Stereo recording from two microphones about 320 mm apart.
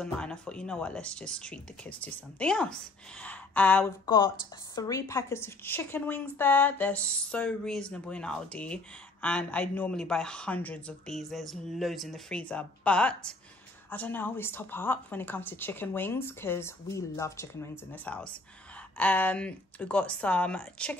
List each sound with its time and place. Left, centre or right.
0.0 s a woman's voice: centre